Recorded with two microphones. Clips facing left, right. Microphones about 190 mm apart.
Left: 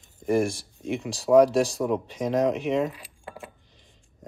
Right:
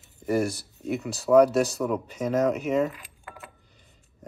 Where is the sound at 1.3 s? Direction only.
20° left (ahead or behind).